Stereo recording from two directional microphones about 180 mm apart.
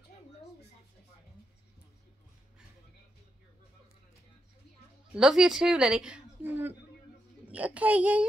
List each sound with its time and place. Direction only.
5.1 s a woman's voice: centre (ahead or behind)